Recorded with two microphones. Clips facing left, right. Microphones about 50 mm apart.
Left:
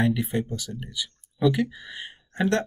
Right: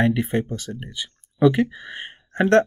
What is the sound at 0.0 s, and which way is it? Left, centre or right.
Speech, right.